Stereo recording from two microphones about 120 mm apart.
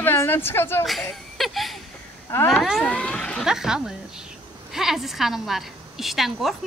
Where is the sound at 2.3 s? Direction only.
20° left (ahead or behind).